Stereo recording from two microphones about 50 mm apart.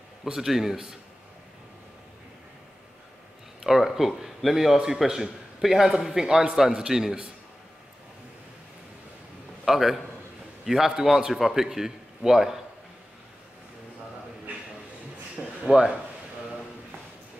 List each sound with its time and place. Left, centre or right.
0.2 s a man's voice: centre
3.6 s a man's voice: centre
9.7 s a man's voice: centre
15.3 s a sound: centre